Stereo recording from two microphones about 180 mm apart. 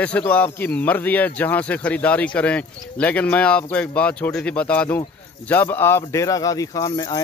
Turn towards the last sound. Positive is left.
turn(degrees=20)  # may be behind; listen again after turning